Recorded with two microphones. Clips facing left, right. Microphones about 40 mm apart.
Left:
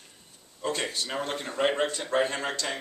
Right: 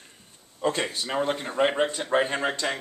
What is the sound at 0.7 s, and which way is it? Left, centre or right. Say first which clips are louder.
Speech: right 4 dB; centre.